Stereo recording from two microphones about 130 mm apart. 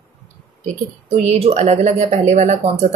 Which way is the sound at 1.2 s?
55° right (ahead or behind).